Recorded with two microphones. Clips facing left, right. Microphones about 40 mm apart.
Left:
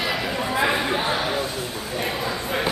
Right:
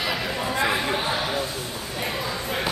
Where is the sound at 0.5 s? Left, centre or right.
Centre.